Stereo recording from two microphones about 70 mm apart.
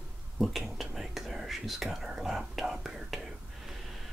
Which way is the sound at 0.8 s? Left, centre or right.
Centre.